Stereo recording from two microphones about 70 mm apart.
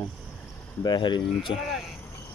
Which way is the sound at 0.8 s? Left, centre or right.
Left.